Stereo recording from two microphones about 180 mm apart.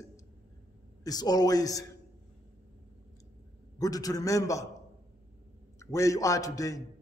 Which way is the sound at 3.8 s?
20° left (ahead or behind).